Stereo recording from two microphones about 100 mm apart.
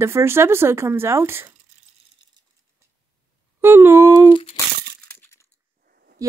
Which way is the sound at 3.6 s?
25° right (ahead or behind).